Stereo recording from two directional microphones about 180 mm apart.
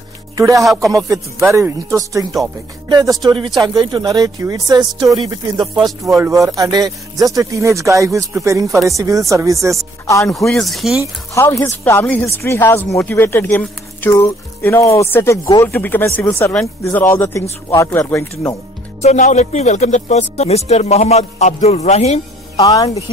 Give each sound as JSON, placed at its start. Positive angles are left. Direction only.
{"t": 0.4, "sound": "speech", "side_deg": -20}
{"t": 0.7, "sound": "speech", "side_deg": 0}
{"t": 0.9, "sound": "speech", "side_deg": -20}
{"t": 10.2, "sound": "speech", "side_deg": 0}
{"t": 11.3, "sound": "speech", "side_deg": 15}
{"t": 18.9, "sound": "speech", "side_deg": 40}
{"t": 22.6, "sound": "speech", "side_deg": 20}